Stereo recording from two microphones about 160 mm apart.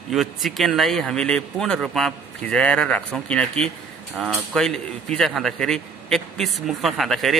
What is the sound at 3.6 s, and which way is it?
Speech, 40° right (ahead or behind).